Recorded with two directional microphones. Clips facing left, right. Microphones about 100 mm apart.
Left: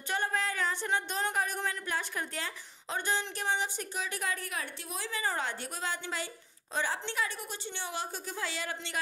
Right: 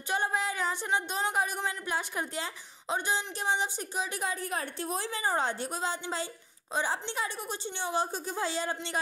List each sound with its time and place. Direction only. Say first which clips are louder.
0.1 s speech: right 2 dB; 15° right (ahead or behind)
4.6 s speech: right 5 dB; 35° right (ahead or behind)